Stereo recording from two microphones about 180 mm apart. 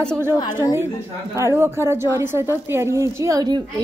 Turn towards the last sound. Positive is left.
turn(degrees=-20)  # may be behind; listen again after turning